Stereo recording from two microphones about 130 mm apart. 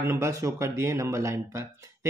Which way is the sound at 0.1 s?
25° right (ahead or behind).